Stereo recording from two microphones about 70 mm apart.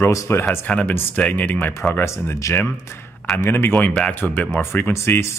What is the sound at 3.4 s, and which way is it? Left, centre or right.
Speech, left.